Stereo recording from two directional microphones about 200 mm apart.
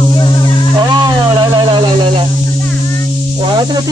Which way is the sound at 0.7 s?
20° right (ahead or behind).